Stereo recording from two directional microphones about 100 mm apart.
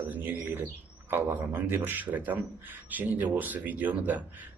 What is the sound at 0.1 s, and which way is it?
Bird, 15° right (ahead or behind).